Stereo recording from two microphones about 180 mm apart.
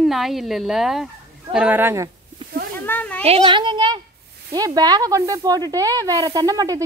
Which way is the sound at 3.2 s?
30° right (ahead or behind).